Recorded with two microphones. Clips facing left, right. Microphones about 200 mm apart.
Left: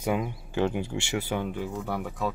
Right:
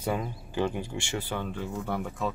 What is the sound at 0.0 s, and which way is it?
Speech, 10° left (ahead or behind).